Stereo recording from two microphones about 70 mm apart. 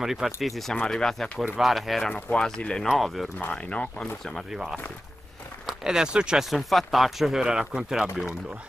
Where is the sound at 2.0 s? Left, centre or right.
Centre.